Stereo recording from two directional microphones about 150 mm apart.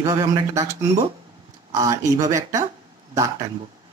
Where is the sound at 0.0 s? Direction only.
25° right (ahead or behind).